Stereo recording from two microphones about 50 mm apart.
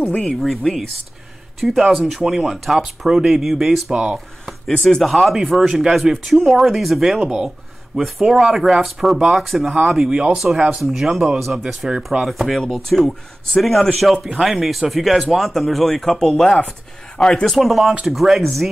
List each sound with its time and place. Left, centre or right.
0.0 s speech: centre
0.4 s speech: centre
4.8 s speech: centre
7.2 s speech: centre
8.0 s speech: centre
10.0 s speech: centre
10.3 s speech: centre
17.5 s speech: centre